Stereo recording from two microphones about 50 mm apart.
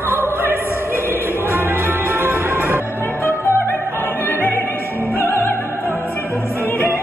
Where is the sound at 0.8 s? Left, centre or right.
Right.